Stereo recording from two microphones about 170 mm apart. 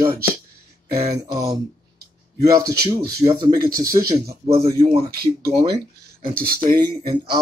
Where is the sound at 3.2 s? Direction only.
20° right (ahead or behind).